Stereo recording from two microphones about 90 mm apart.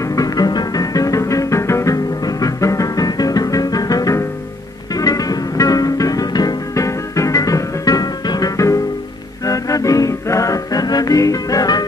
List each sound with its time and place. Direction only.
0.1 s music: 45° left (ahead or behind)